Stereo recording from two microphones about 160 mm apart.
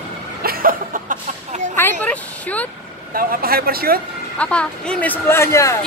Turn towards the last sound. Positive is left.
turn(degrees=20)  # may be behind; listen again after turning